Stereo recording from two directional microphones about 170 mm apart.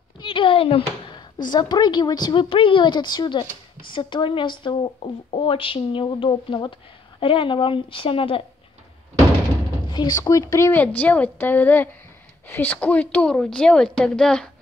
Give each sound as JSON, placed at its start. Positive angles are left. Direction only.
{"t": 0.2, "sound": "a sound", "side_deg": 30}
{"t": 1.5, "sound": "a woman's voice", "side_deg": 25}
{"t": 9.8, "sound": "a woman's voice", "side_deg": 25}